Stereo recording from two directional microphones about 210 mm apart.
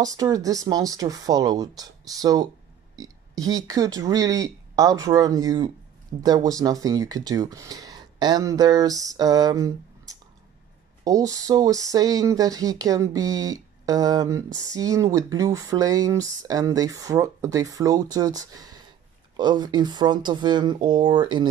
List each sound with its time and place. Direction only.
0.0 s speech: 15° right (ahead or behind)